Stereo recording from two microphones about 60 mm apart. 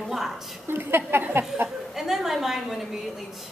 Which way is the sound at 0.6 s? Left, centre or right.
Right.